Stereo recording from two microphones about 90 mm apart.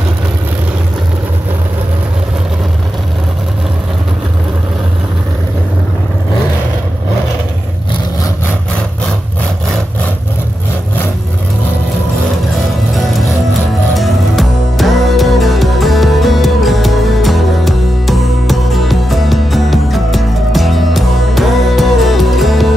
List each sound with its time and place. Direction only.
13.9 s music: centre (ahead or behind)